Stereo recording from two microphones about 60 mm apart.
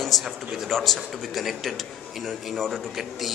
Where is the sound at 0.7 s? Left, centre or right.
Centre.